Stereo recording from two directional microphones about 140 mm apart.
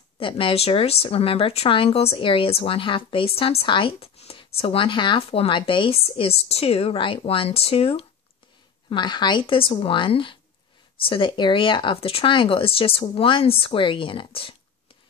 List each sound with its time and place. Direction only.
0.2 s speech: 40° left (ahead or behind)